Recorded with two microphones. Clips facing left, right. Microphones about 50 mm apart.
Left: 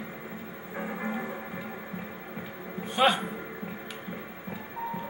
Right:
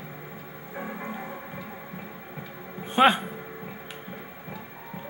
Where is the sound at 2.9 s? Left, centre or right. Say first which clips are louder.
Right 4 dB; right.